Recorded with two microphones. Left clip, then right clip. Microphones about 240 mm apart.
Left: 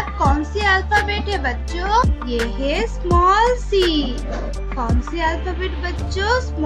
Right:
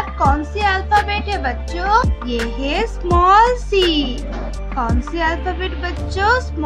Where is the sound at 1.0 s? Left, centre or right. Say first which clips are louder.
Right 1 dB; centre.